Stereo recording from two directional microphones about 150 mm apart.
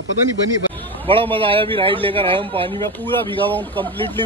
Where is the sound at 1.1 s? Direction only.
35° right (ahead or behind).